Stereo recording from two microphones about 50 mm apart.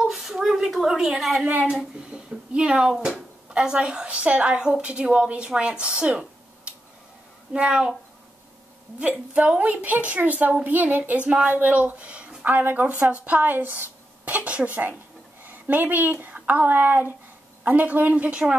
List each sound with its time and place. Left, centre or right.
0.0 s a sound: centre
1.6 s a woman's voice: centre
4.1 s a woman's voice: right
4.6 s a woman's voice: centre
9.0 s a woman's voice: right
12.4 s a woman's voice: right; by 18.6 s centre